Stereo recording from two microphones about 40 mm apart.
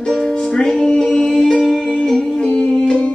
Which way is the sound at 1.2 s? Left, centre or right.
Centre.